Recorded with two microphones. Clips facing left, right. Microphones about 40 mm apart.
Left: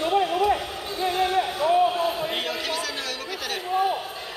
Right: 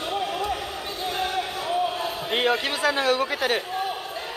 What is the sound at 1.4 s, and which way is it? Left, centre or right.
Basketball bounce, centre.